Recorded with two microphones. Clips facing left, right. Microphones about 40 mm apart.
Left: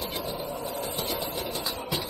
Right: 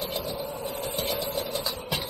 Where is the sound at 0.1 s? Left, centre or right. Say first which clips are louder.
Right 1 dB; left.